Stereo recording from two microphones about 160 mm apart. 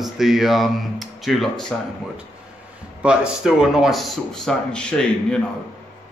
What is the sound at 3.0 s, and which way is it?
A man's voice, 5° right (ahead or behind).